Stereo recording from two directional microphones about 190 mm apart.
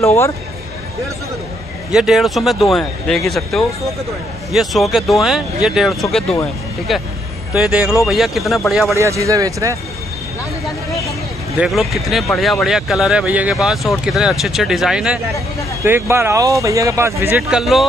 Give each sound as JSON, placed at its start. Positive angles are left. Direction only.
{"t": 0.0, "sound": "speech", "side_deg": 15}
{"t": 1.9, "sound": "speech", "side_deg": 0}
{"t": 8.9, "sound": "speech", "side_deg": -15}
{"t": 11.6, "sound": "speech", "side_deg": 0}
{"t": 17.4, "sound": "speech", "side_deg": 0}